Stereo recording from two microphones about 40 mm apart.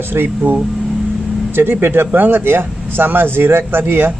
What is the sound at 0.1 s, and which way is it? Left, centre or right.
Speech, right.